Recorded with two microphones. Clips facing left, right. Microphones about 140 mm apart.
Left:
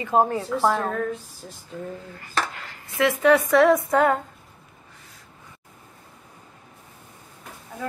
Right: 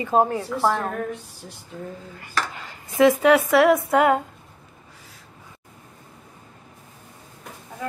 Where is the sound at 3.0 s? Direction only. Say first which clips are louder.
Right 6 dB; 15° right (ahead or behind).